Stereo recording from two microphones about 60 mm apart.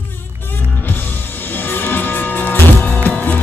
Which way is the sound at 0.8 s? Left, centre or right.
Left.